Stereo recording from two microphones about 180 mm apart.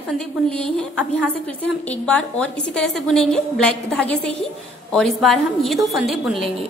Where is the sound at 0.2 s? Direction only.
5° left (ahead or behind).